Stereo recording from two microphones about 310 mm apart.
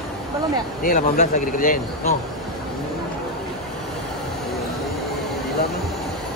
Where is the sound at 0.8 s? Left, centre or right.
Left.